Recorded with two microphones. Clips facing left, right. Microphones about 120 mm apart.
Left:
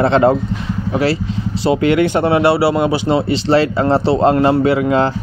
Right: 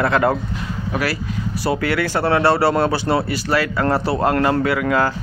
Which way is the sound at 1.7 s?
20° left (ahead or behind).